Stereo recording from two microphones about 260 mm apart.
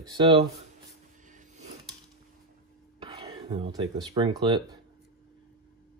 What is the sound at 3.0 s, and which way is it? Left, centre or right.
Speech, right.